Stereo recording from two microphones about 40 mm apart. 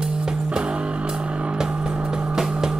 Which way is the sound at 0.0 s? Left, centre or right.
Right.